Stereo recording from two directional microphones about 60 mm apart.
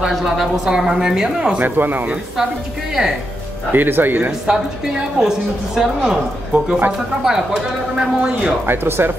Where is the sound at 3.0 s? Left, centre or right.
Centre.